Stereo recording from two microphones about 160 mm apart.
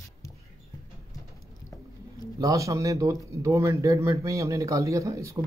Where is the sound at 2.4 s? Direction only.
20° right (ahead or behind).